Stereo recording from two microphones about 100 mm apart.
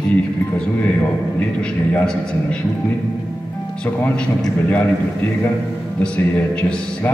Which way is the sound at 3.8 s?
10° left (ahead or behind).